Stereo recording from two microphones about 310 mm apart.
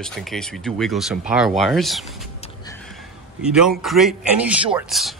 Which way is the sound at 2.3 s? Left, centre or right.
Centre.